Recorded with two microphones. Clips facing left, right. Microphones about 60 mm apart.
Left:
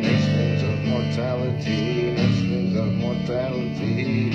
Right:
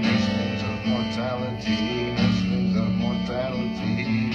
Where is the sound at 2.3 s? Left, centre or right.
Left.